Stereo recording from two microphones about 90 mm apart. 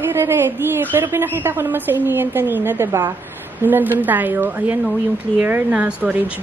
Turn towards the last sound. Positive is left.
turn(degrees=-15)  # may be behind; listen again after turning